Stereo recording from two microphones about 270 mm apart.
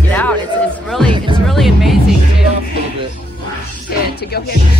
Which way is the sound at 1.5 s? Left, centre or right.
Centre.